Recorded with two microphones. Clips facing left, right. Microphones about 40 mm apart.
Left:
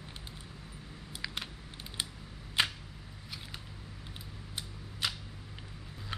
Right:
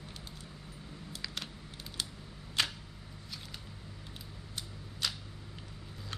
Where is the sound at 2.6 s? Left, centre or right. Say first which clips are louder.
Left 2 dB; left.